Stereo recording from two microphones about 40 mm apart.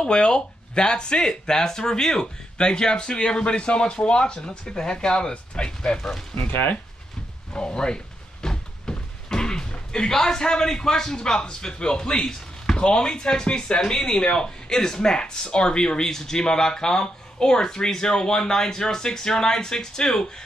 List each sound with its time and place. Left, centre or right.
0.0 s speech: left
5.9 s speech: centre
6.3 s speech: left
7.5 s speech: left